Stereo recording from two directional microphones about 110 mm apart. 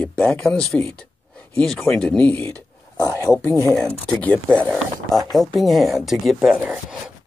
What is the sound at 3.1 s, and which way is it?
Speech, 30° left (ahead or behind).